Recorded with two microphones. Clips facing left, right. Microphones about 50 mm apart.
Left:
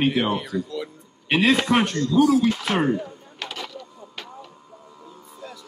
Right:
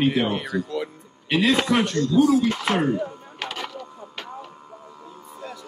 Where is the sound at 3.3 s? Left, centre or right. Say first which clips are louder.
Right 2 dB; right.